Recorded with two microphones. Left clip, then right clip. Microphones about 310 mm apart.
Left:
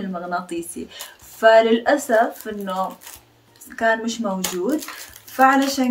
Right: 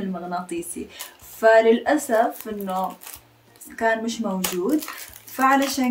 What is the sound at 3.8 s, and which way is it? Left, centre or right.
Speech, centre.